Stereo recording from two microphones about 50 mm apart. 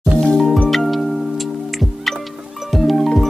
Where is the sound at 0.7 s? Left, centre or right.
Centre.